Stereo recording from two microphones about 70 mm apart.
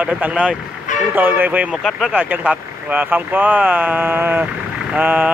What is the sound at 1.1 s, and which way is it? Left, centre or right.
Speech, right.